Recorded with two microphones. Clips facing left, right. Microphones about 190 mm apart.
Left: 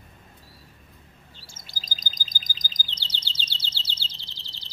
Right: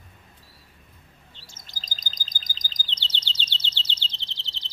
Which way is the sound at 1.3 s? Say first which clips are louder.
Even; 10° left (ahead or behind).